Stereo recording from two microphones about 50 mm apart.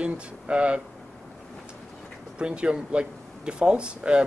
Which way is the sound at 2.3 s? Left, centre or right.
Right.